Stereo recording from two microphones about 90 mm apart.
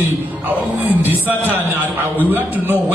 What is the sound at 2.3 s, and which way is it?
Music, 20° right (ahead or behind).